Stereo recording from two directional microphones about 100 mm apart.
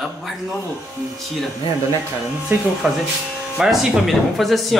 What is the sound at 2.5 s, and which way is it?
Speech, 20° right (ahead or behind).